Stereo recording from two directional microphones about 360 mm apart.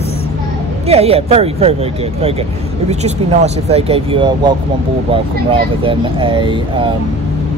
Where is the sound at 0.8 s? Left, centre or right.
Centre.